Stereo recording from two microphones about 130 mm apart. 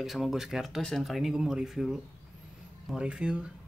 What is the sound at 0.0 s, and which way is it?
Speech, centre (ahead or behind).